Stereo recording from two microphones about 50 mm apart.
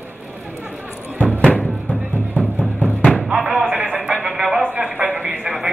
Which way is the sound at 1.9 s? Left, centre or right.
Right.